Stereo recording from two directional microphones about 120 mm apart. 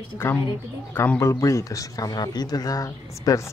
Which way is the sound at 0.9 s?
20° left (ahead or behind).